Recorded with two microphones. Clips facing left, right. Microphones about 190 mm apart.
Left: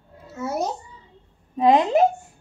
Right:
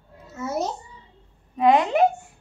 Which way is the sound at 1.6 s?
35° left (ahead or behind).